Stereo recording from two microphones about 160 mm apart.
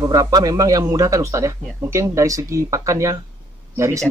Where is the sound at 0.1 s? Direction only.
25° right (ahead or behind).